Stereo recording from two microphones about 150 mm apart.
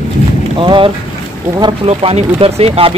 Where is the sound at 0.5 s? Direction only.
35° right (ahead or behind).